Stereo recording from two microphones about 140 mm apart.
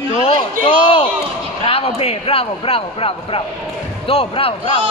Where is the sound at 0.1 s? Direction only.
40° left (ahead or behind).